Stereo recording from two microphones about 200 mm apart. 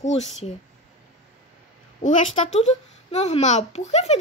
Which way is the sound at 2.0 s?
40° left (ahead or behind).